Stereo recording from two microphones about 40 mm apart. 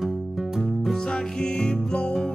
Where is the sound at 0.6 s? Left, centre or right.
Centre.